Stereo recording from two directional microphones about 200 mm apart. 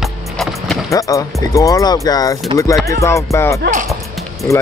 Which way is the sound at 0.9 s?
15° left (ahead or behind).